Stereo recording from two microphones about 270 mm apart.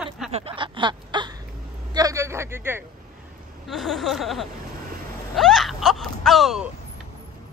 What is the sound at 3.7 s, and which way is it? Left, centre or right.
Speech, centre.